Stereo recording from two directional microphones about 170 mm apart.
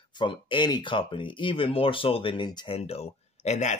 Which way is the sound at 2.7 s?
35° left (ahead or behind).